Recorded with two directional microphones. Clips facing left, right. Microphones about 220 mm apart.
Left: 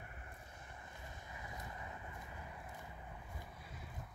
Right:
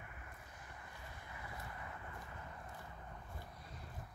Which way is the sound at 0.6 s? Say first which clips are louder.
Left 1 dB; 20° left (ahead or behind).